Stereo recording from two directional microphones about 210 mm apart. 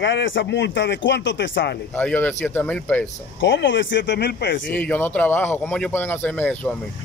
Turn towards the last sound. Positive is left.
turn(degrees=5)  # may be behind; listen again after turning